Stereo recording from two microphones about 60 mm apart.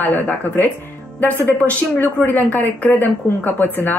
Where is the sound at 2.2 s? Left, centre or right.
Left.